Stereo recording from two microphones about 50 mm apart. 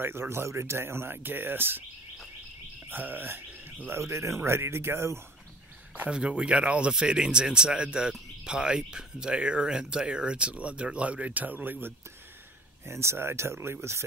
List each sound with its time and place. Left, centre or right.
0.0 s speech: right
2.9 s speech: right
3.9 s speech: right
4.4 s speech: right
6.0 s speech: right
12.8 s speech: right